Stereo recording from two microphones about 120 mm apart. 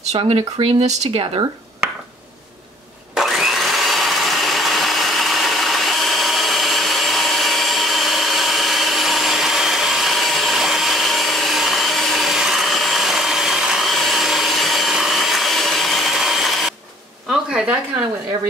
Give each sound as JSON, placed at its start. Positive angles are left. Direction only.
{"t": 0.2, "sound": "speech", "side_deg": -55}
{"t": 3.2, "sound": "vacuum cleaner", "side_deg": 0}
{"t": 17.5, "sound": "a sound", "side_deg": -10}